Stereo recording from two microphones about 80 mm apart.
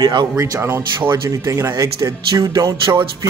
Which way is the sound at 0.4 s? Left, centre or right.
Right.